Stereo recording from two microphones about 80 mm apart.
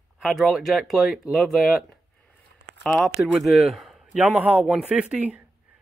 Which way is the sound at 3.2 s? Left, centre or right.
Centre.